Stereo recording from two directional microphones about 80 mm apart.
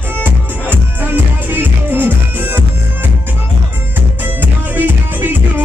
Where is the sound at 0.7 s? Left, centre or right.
Right.